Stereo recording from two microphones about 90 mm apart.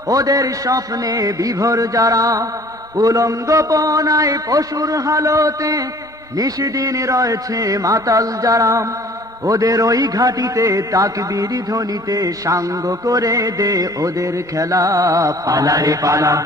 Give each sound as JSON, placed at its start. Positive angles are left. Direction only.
{"t": 0.1, "sound": "a man's voice", "side_deg": -40}